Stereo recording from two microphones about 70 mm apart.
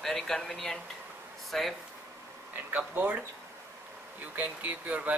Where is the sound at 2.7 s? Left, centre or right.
Right.